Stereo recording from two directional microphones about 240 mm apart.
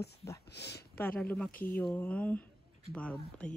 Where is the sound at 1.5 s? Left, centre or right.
Left.